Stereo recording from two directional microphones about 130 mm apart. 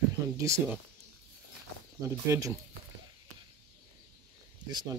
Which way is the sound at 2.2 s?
25° right (ahead or behind).